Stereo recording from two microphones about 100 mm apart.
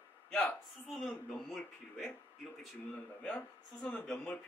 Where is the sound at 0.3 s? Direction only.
15° left (ahead or behind).